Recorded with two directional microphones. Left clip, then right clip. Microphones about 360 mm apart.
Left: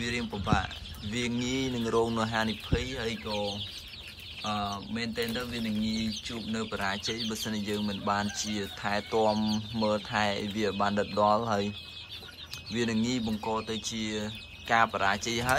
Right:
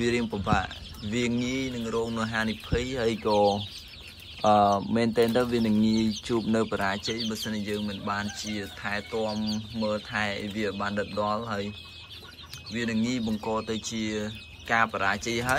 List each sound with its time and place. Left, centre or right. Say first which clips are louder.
0.0 s speech: right 5 dB; centre
12.7 s speech: right 1 dB; centre